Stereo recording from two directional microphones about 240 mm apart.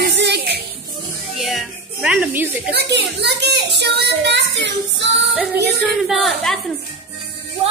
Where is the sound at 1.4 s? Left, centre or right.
Centre.